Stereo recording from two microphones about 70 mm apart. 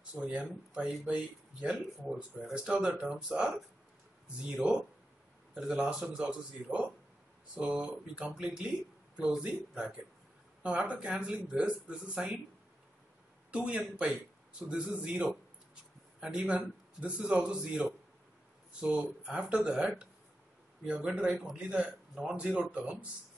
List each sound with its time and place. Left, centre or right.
0.1 s speech: centre
5.5 s speech: centre
13.5 s speech: centre